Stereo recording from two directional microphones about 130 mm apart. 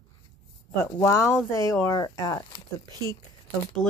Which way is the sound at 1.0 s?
20° left (ahead or behind).